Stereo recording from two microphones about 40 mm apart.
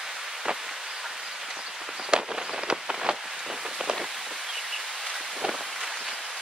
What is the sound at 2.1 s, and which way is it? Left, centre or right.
Fireworks, right.